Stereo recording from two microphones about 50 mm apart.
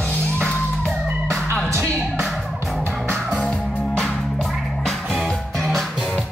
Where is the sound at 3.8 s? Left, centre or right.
Centre.